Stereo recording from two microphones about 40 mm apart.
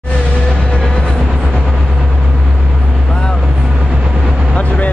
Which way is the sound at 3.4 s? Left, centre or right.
Centre.